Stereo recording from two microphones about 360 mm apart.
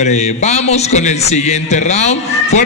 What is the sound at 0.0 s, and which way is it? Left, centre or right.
A man's voice, centre.